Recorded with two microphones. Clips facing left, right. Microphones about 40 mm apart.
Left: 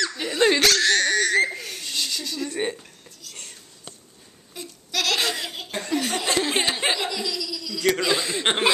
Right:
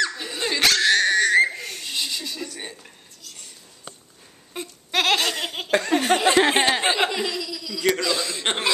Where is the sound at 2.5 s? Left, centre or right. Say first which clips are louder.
Left 9 dB; left.